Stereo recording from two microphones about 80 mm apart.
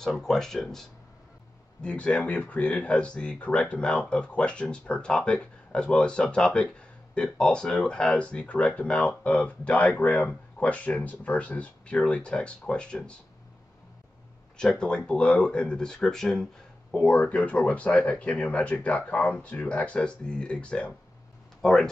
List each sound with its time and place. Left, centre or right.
0.0 s speech: centre
14.6 s speech: centre